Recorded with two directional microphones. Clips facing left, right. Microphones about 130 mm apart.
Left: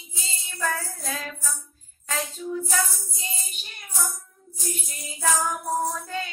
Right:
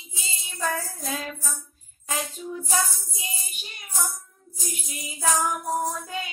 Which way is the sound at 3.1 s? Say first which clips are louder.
Left 1 dB; 15° right (ahead or behind).